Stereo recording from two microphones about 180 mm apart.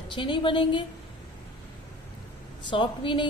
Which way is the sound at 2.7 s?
30° left (ahead or behind).